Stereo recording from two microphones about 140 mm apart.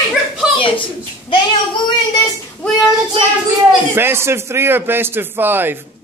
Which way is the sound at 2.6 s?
Centre (ahead or behind).